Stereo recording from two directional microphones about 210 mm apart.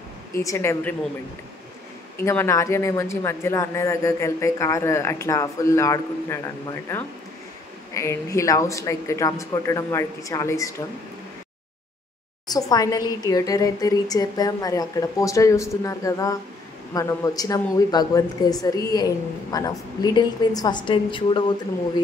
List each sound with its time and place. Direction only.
0.3 s speech: 15° left (ahead or behind)
2.1 s speech: 10° left (ahead or behind)
12.4 s speech: 15° left (ahead or behind)